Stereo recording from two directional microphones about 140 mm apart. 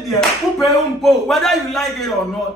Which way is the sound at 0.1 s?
Centre (ahead or behind).